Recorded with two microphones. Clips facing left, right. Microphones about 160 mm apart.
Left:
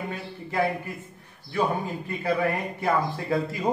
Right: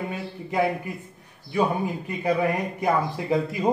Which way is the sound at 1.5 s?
15° right (ahead or behind).